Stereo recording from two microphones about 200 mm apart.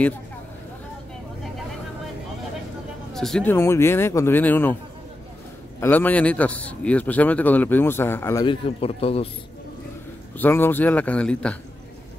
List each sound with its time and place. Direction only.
3.1 s a man's voice: centre (ahead or behind)
5.8 s a man's voice: 10° left (ahead or behind)
8.5 s a man's voice: 30° left (ahead or behind)
10.3 s a man's voice: 10° left (ahead or behind)